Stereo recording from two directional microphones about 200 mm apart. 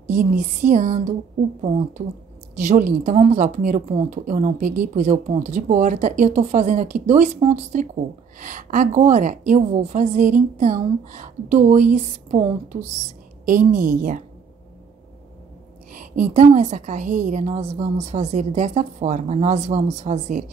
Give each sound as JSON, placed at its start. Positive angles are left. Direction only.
{"t": 0.0, "sound": "a woman's voice", "side_deg": -40}
{"t": 15.9, "sound": "a woman's voice", "side_deg": -40}